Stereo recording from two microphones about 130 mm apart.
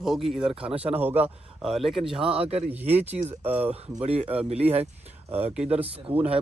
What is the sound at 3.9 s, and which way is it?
Speech, 50° right (ahead or behind).